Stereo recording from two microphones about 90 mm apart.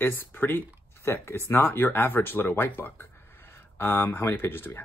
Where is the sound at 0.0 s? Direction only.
25° left (ahead or behind).